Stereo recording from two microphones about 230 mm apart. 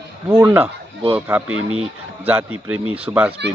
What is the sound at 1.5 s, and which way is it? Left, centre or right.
Speech, right.